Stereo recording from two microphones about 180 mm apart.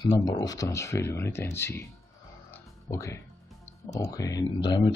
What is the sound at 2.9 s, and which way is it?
Speech, 15° left (ahead or behind).